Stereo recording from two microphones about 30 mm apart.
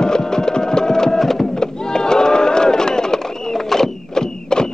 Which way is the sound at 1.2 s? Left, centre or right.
Centre.